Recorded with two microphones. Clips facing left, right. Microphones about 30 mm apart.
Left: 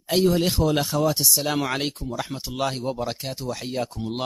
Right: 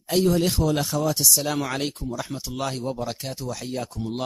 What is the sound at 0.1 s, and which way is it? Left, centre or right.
Speech, centre.